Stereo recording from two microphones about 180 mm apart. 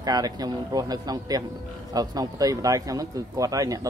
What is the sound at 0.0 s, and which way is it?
Speech, 20° right (ahead or behind).